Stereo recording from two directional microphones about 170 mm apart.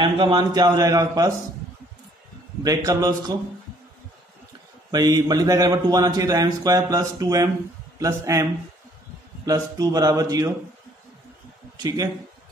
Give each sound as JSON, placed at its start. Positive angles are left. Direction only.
{"t": 0.0, "sound": "a man's voice", "side_deg": -30}
{"t": 2.6, "sound": "a man's voice", "side_deg": -20}
{"t": 4.9, "sound": "a man's voice", "side_deg": -20}
{"t": 9.5, "sound": "a man's voice", "side_deg": -20}
{"t": 11.7, "sound": "a man's voice", "side_deg": -20}